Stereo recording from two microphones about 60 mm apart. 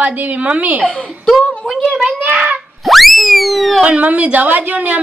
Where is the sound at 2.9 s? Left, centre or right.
Centre.